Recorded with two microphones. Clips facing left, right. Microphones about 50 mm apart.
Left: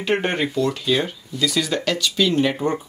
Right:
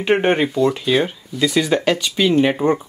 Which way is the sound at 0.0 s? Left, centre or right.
Right.